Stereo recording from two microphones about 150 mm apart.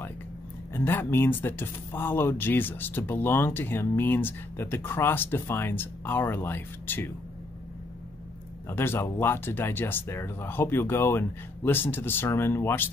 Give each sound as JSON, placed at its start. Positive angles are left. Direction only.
{"t": 0.7, "sound": "speech", "side_deg": 15}
{"t": 8.6, "sound": "speech", "side_deg": 15}